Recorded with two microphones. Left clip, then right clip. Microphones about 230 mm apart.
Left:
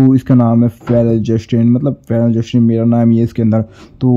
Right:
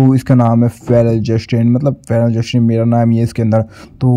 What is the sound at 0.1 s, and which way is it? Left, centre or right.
Speech, centre.